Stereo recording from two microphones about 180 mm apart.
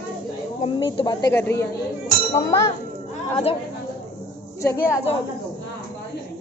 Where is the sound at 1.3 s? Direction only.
10° left (ahead or behind).